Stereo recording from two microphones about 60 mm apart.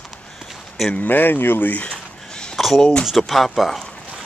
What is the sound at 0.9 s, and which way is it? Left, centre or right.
Speech, left.